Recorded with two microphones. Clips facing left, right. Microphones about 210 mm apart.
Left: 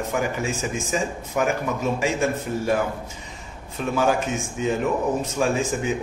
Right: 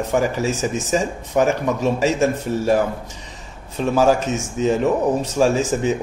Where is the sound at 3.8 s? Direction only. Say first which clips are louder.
Right 6 dB; 30° right (ahead or behind).